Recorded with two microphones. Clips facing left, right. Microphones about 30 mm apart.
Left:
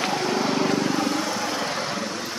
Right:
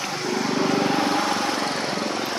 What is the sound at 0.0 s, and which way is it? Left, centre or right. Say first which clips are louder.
Vehicle: left 3 dB; left.